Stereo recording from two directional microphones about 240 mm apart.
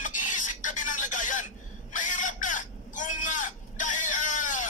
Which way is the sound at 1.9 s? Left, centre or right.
Left.